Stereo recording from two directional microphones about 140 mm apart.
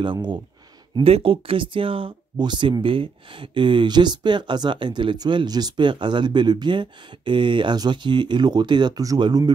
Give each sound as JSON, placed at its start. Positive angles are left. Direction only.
{"t": 0.0, "sound": "speech", "side_deg": -35}